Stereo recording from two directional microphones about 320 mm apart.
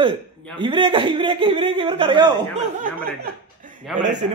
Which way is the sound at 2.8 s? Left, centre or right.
Right.